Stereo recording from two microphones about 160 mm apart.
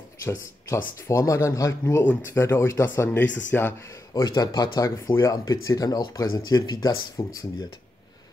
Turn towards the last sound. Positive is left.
turn(degrees=25)  # may be behind; listen again after turning